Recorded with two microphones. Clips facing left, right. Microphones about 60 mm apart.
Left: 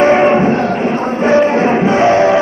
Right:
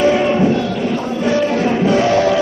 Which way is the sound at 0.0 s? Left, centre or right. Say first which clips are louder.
Left 4 dB; left.